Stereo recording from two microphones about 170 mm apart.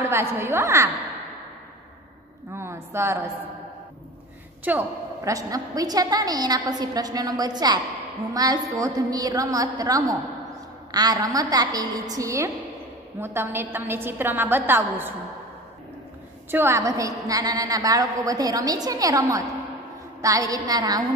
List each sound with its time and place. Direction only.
0.0 s a woman's voice: 15° right (ahead or behind)
2.5 s a sound: 15° right (ahead or behind)
4.6 s a woman's voice: 15° right (ahead or behind)
16.4 s a woman's voice: 15° right (ahead or behind)